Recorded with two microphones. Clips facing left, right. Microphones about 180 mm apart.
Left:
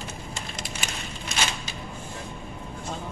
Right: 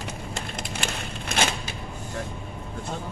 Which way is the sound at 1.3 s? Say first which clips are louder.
Right 5 dB; 55° right (ahead or behind).